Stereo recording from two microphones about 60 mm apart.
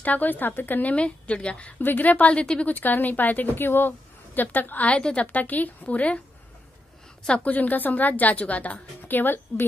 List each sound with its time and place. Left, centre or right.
0.0 s a woman's voice: left
0.9 s a woman's voice: centre
1.8 s a woman's voice: left
2.7 s a woman's voice: left
7.2 s a woman's voice: left